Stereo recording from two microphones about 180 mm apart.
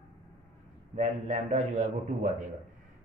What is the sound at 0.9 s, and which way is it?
A man's voice, 40° right (ahead or behind).